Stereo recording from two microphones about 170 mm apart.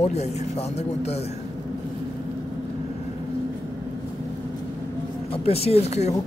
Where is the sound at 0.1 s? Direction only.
40° left (ahead or behind).